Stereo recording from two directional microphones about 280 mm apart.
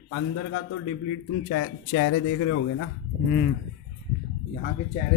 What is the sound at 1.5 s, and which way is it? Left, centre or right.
Speech, left.